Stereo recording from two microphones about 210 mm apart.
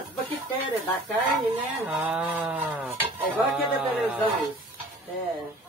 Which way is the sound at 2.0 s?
5° right (ahead or behind).